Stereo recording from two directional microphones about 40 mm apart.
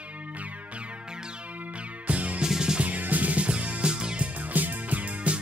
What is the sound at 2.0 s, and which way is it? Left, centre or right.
Music, right.